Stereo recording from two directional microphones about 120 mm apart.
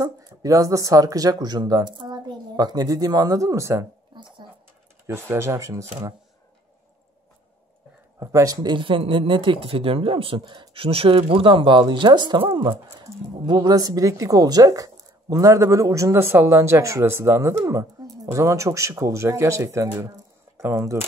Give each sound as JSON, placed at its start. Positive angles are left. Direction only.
{"t": 0.0, "sound": "speech", "side_deg": -30}
{"t": 4.1, "sound": "a sound", "side_deg": -40}
{"t": 5.0, "sound": "a woman's voice", "side_deg": -20}
{"t": 8.2, "sound": "a woman's voice", "side_deg": -25}
{"t": 8.7, "sound": "speech", "side_deg": -45}
{"t": 13.0, "sound": "a woman's voice", "side_deg": -30}